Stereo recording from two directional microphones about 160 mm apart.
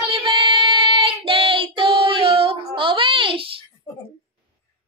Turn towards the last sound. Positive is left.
turn(degrees=-35)  # may be behind; listen again after turning